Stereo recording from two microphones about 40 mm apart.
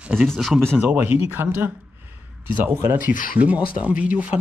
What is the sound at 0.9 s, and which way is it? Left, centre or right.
Speech, right.